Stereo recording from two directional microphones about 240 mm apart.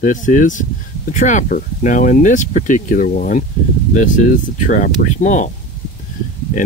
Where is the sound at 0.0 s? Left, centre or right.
Left.